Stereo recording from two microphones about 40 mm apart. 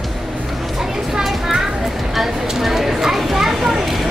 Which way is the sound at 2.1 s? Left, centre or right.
Centre.